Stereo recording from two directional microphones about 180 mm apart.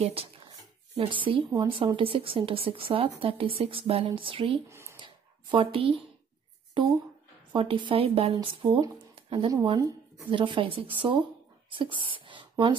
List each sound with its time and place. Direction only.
0.0 s a woman's voice: 35° right (ahead or behind)
4.6 s speech: 15° right (ahead or behind)
4.9 s a sound: 25° right (ahead or behind)
7.5 s speech: 25° right (ahead or behind)